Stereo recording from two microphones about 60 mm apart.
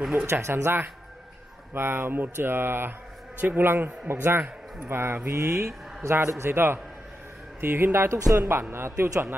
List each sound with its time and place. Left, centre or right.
0.3 s a man's voice: right